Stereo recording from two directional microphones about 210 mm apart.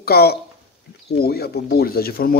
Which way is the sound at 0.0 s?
50° left (ahead or behind).